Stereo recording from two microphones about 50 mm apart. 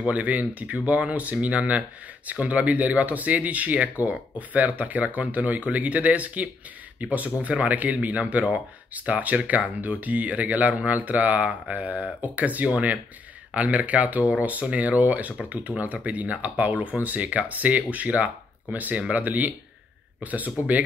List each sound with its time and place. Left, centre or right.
0.0 s speech: right